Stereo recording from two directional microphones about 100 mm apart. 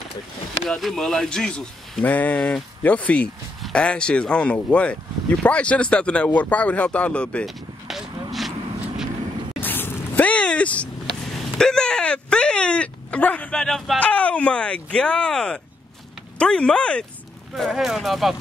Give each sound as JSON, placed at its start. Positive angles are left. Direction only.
{"t": 0.7, "sound": "speech", "side_deg": 0}
{"t": 7.4, "sound": "a sound", "side_deg": 0}
{"t": 9.6, "sound": "a sound", "side_deg": 20}
{"t": 11.5, "sound": "speech", "side_deg": 5}
{"t": 13.9, "sound": "speech", "side_deg": 15}
{"t": 17.6, "sound": "speech", "side_deg": -5}